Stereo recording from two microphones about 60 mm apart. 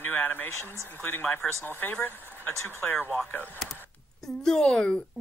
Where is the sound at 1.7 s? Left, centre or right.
Left.